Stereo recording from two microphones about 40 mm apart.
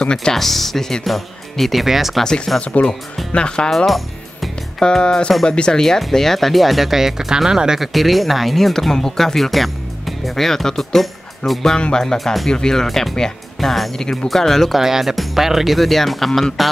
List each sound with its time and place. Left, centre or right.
0.0 s speech: centre
0.4 s speech: centre
2.2 s speech: centre
2.6 s speech: left
3.7 s music: centre
4.8 s speech: left
5.8 s speech: centre
7.9 s speech: centre
11.8 s speech: centre
12.8 s speech: centre
14.8 s speech: centre